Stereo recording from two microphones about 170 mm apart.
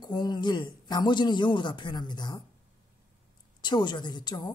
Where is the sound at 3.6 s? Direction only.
25° left (ahead or behind).